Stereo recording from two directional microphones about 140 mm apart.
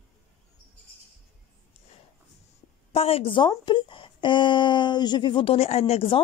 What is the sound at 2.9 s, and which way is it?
A woman's voice, 45° left (ahead or behind).